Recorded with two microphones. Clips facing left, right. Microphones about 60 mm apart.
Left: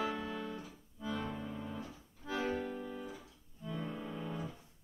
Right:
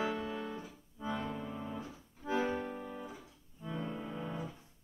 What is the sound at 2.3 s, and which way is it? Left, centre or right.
Accordion, right.